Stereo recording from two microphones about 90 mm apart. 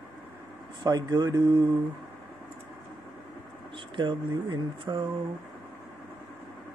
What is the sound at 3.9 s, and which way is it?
Speech, 60° right (ahead or behind).